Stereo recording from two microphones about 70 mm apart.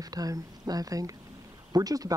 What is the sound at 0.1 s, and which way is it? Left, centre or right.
Speech, right.